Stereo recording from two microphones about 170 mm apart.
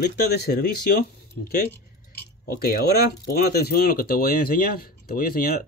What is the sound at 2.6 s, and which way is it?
Speech, 65° left (ahead or behind).